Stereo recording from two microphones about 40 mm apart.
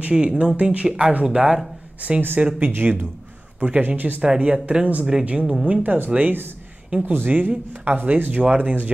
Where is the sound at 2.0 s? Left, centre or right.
Right.